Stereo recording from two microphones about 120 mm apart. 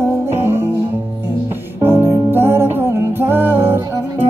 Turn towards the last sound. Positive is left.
turn(degrees=-20)  # may be behind; listen again after turning